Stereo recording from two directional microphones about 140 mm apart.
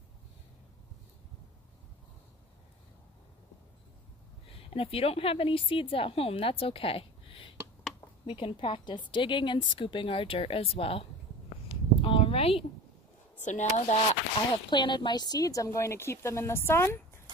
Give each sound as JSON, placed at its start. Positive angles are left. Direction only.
{"t": 4.5, "sound": "a woman's voice", "side_deg": 45}
{"t": 12.0, "sound": "a sound", "side_deg": 40}
{"t": 13.4, "sound": "speech", "side_deg": 55}
{"t": 14.7, "sound": "a woman's voice", "side_deg": 35}